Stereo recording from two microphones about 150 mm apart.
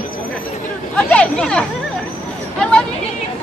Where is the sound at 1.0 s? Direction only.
5° left (ahead or behind).